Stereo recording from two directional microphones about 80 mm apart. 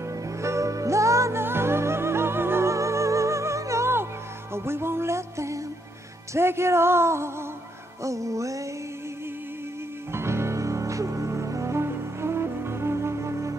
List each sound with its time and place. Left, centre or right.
0.1 s music: right
10.1 s music: right